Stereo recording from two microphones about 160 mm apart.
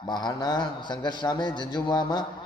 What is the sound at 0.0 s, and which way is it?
A man's voice, 25° left (ahead or behind).